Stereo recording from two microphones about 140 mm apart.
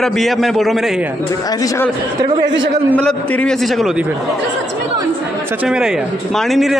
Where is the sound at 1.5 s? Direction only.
25° left (ahead or behind).